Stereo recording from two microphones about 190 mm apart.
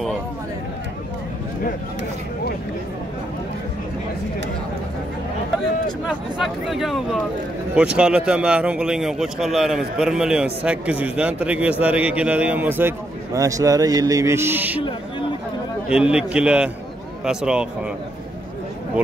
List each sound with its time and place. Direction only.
6.0 s a man's voice: 5° right (ahead or behind)
14.8 s speech: 25° left (ahead or behind)
15.9 s speech: 5° right (ahead or behind)